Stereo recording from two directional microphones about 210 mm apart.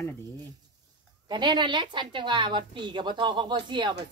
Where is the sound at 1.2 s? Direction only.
20° right (ahead or behind).